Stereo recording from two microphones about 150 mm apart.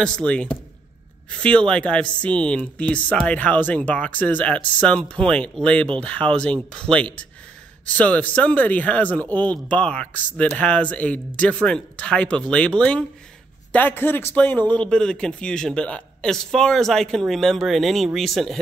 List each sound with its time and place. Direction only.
0.0 s a man's voice: 5° left (ahead or behind)